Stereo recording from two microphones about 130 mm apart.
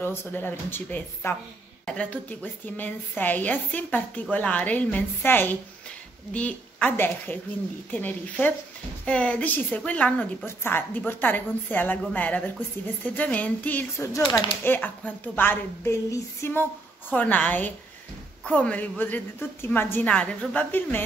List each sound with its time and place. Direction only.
0.0 s a woman's voice: 20° left (ahead or behind)